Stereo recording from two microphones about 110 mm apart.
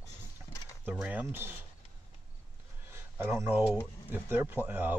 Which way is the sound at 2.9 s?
20° right (ahead or behind).